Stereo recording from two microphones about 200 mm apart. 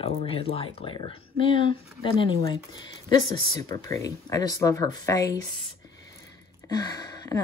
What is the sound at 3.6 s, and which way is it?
Speech, 20° left (ahead or behind).